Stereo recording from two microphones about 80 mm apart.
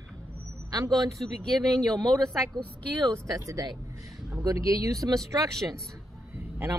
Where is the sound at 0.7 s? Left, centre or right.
Right.